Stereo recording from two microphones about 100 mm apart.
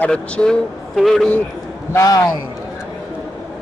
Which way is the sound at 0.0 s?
10° left (ahead or behind).